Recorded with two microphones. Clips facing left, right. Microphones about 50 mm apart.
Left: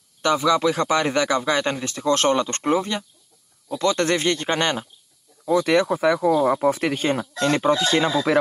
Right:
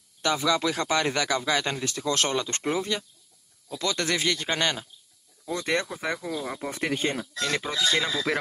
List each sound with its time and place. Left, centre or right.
0.2 s a man's voice: left
5.5 s speech: centre